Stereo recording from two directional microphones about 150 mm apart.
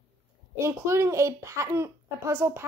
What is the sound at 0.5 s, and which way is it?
A child's voice, 20° right (ahead or behind).